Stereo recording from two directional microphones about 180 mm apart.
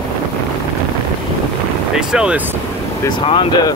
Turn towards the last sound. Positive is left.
turn(degrees=25)  # may be behind; listen again after turning